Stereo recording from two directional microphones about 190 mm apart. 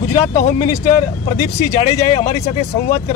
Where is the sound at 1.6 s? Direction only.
35° left (ahead or behind).